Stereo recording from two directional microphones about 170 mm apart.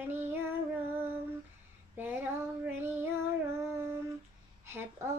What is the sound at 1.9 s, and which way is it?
Female singing, 10° right (ahead or behind).